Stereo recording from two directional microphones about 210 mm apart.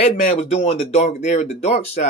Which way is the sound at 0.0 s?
30° left (ahead or behind).